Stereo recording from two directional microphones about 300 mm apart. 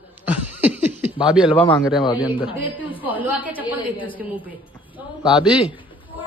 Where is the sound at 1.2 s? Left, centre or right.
Centre.